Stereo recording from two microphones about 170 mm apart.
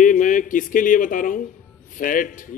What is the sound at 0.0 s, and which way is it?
A man's voice, 50° left (ahead or behind).